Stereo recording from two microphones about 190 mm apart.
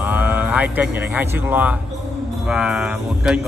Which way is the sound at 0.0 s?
10° right (ahead or behind).